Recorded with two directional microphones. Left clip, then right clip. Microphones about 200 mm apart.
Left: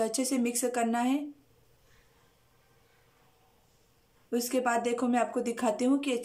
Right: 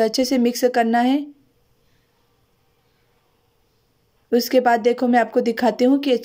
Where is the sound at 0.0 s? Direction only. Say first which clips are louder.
Right 12 dB; 30° right (ahead or behind).